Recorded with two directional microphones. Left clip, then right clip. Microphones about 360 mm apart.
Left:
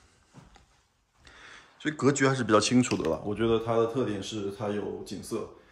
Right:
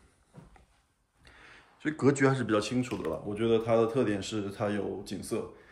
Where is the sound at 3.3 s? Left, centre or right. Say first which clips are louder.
Right 2 dB; centre.